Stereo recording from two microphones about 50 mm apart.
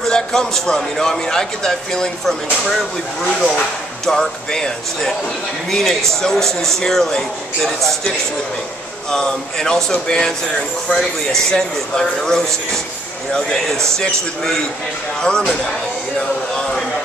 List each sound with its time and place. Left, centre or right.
0.1 s speech: centre
3.5 s speech: centre
9.1 s speech: centre